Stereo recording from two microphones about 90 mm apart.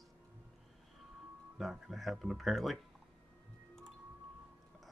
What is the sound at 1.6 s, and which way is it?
Speech, centre (ahead or behind).